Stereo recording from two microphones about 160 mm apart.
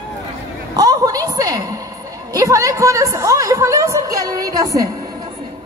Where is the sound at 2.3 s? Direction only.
20° right (ahead or behind).